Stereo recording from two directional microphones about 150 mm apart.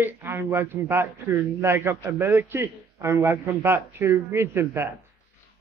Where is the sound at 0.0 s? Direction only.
15° right (ahead or behind).